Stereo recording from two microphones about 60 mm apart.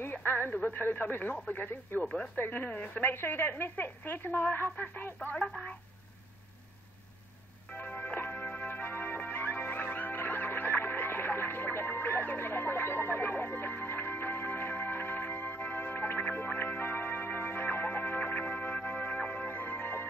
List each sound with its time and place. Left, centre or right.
0.0 s a woman's voice: left
7.7 s music: left